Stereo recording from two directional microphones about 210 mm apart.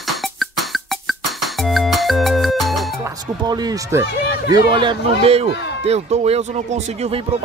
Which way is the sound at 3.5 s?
20° right (ahead or behind).